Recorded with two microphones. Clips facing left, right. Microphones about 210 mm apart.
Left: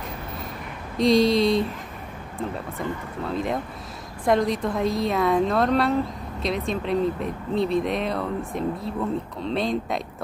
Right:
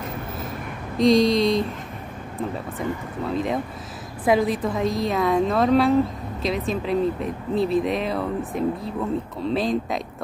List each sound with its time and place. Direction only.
0.9 s speech: centre (ahead or behind)